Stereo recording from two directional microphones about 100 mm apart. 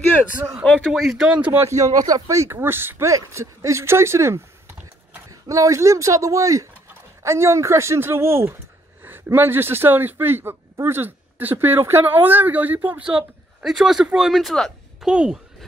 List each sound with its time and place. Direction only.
0.6 s speech: 10° left (ahead or behind)
1.0 s speech: 5° right (ahead or behind)
1.8 s speech: 35° right (ahead or behind); by 15.0 s 5° left (ahead or behind)
15.0 s speech: 10° right (ahead or behind)